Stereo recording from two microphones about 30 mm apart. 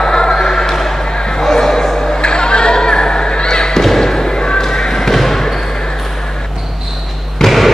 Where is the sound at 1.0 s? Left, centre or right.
Left.